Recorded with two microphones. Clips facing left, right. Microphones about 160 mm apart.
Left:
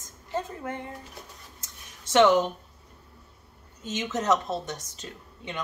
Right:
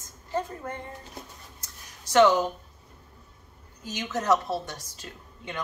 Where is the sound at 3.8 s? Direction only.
20° left (ahead or behind).